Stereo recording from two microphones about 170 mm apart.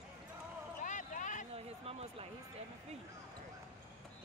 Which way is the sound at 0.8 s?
50° left (ahead or behind).